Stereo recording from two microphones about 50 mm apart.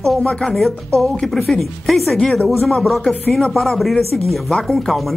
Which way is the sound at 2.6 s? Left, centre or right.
Centre.